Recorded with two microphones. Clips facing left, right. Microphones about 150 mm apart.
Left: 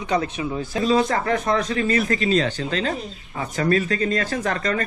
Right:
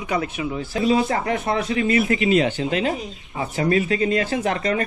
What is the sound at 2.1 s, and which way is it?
Speech, 15° right (ahead or behind).